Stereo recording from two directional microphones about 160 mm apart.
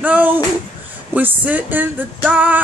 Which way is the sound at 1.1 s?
10° right (ahead or behind).